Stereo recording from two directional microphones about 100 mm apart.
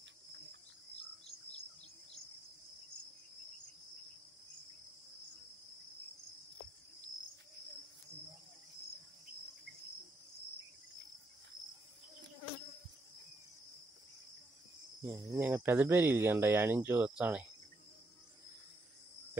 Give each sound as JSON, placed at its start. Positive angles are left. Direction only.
{"t": 15.0, "sound": "speech", "side_deg": -25}